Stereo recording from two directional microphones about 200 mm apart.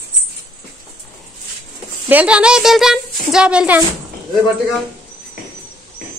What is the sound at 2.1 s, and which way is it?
A woman's voice, 5° right (ahead or behind).